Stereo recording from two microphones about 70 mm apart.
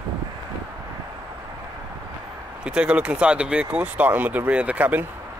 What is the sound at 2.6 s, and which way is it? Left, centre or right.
Speech, centre.